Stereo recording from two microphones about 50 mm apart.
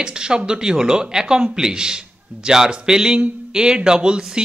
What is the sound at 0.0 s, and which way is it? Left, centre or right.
Speech, centre.